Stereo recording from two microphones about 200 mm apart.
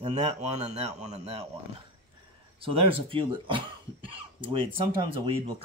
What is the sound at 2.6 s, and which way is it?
Speech, 25° right (ahead or behind).